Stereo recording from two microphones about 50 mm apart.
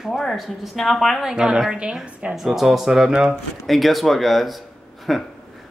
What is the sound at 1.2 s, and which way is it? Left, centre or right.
A woman's voice, centre.